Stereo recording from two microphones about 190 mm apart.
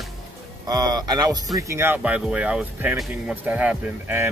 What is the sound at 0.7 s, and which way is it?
Speech, 20° right (ahead or behind).